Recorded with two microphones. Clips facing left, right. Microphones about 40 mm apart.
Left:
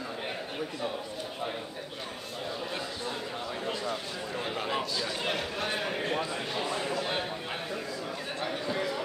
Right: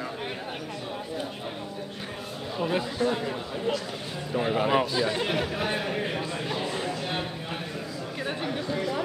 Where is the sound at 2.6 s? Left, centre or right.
Right.